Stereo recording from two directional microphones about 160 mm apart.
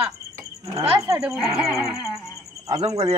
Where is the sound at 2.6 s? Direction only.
25° right (ahead or behind).